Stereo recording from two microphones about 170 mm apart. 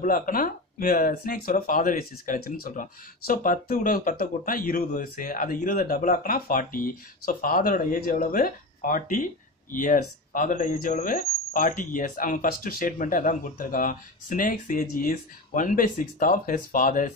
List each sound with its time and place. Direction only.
0.0 s speech: 55° left (ahead or behind)